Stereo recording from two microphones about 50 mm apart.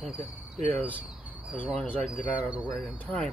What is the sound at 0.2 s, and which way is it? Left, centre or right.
Cricket, left.